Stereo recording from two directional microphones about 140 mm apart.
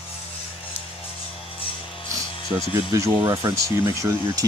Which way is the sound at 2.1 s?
25° right (ahead or behind).